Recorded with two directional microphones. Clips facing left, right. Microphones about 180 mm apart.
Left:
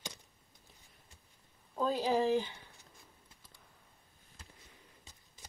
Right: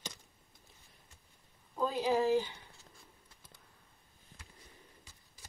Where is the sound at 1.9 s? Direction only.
40° left (ahead or behind).